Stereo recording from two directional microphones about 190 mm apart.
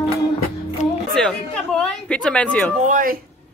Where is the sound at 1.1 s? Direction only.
Centre (ahead or behind).